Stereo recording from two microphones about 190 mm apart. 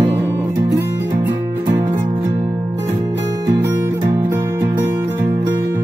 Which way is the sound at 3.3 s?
15° right (ahead or behind).